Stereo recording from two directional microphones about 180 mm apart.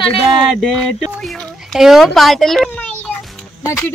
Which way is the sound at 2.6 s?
10° left (ahead or behind).